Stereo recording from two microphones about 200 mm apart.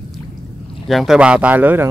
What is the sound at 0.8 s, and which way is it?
Speech, centre (ahead or behind).